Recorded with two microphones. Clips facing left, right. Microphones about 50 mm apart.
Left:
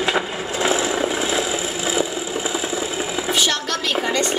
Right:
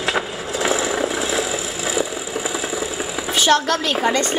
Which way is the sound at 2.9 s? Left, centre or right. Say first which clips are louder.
Left 2 dB; left.